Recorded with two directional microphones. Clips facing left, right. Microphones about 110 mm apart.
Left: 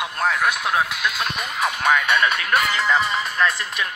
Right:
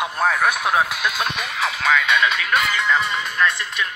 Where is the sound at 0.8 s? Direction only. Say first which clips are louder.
Right 2 dB; 20° right (ahead or behind).